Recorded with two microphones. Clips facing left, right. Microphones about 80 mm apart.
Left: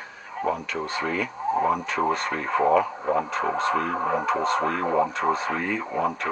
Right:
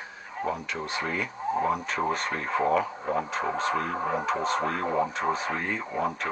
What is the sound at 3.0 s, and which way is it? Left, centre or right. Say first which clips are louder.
Speech: left 4 dB; centre.